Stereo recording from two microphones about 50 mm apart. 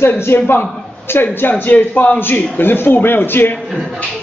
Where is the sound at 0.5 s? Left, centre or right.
Left.